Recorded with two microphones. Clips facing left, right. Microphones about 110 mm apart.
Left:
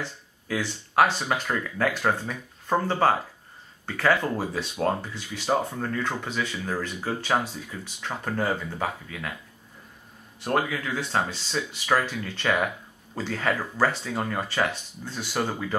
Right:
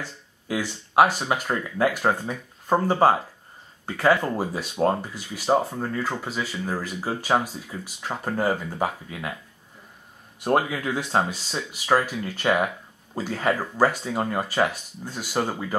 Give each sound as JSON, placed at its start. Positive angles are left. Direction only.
{"t": 0.5, "sound": "speech", "side_deg": -15}
{"t": 10.4, "sound": "speech", "side_deg": -20}